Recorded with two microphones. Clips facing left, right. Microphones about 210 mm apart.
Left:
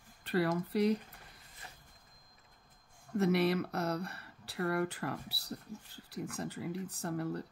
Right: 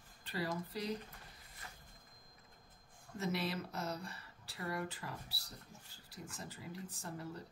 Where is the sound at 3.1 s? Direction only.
65° left (ahead or behind).